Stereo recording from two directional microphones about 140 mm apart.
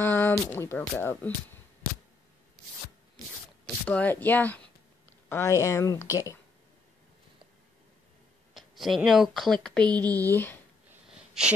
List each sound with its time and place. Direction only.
0.0 s speech: 15° left (ahead or behind)
3.6 s speech: 10° left (ahead or behind)
8.5 s speech: centre (ahead or behind)
10.9 s sneeze: 5° right (ahead or behind)